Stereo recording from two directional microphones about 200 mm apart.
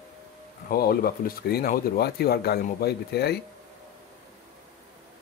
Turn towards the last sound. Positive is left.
turn(degrees=55)  # may be behind; listen again after turning